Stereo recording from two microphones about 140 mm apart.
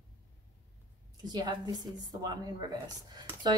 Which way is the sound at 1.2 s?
30° right (ahead or behind).